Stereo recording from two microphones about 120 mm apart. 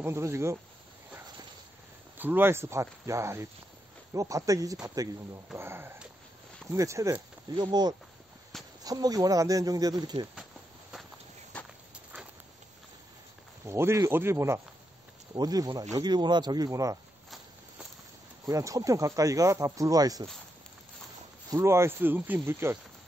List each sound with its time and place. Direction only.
0.0 s speech: 25° right (ahead or behind)
2.1 s speech: 15° right (ahead or behind)
7.5 s speech: 40° right (ahead or behind)
13.7 s speech: 20° right (ahead or behind)
15.3 s speech: 35° right (ahead or behind)
18.4 s speech: 30° right (ahead or behind)
21.5 s speech: 25° right (ahead or behind)